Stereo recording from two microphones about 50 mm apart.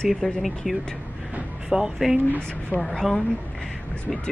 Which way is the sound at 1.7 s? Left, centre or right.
Centre.